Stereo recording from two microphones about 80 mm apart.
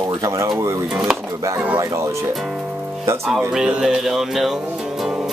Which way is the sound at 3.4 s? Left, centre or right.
Centre.